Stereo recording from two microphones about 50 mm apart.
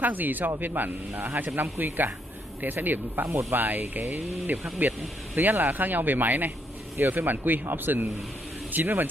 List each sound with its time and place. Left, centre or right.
0.0 s speech: right
3.3 s speech: right